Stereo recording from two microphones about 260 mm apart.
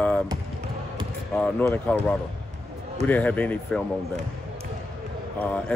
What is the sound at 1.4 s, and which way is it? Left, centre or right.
Speech, centre.